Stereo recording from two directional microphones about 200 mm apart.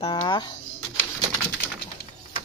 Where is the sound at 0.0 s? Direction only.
25° left (ahead or behind).